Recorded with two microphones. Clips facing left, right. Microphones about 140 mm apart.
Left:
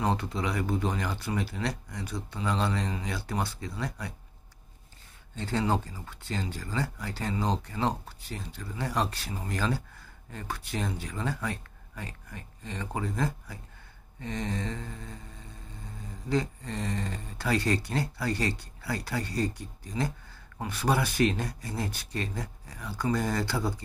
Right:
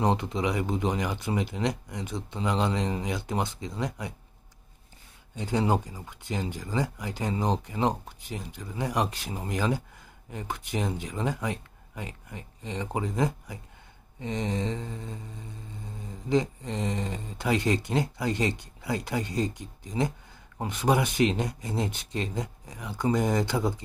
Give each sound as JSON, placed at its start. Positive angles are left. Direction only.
{"t": 0.0, "sound": "speech", "side_deg": -20}
{"t": 5.3, "sound": "speech", "side_deg": -15}